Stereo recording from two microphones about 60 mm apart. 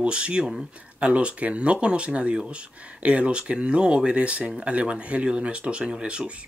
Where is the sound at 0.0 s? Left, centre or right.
Centre.